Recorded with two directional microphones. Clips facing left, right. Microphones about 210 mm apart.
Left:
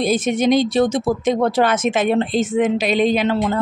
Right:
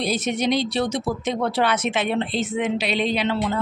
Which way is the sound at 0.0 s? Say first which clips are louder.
Left 6 dB; 50° left (ahead or behind).